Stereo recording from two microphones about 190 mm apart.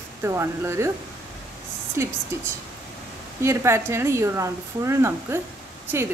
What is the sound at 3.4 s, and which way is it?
Speech, 15° right (ahead or behind).